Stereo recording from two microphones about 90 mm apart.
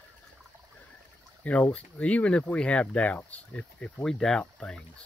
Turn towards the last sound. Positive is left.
turn(degrees=10)  # may be behind; listen again after turning